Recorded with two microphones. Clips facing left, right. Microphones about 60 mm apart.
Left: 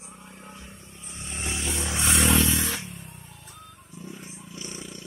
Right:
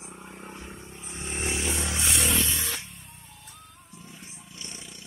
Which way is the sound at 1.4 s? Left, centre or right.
Centre.